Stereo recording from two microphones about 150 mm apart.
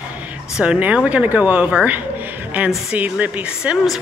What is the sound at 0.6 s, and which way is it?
Speech, 10° right (ahead or behind).